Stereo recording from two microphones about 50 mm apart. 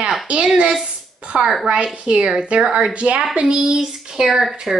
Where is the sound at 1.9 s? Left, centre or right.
Right.